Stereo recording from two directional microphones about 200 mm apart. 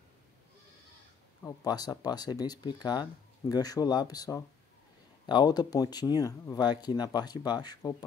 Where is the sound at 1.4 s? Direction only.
20° left (ahead or behind).